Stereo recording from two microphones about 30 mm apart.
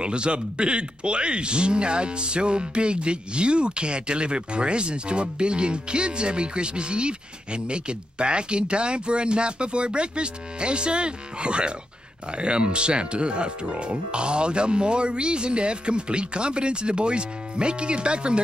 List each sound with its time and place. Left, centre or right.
0.0 s speech: right